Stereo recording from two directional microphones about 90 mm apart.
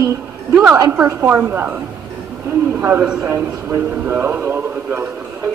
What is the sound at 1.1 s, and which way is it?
Speech, 25° right (ahead or behind).